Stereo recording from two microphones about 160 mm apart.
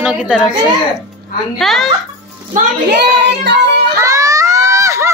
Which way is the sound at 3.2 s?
90° right.